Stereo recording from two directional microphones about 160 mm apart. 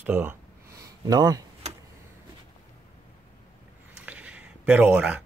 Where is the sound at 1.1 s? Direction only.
25° right (ahead or behind).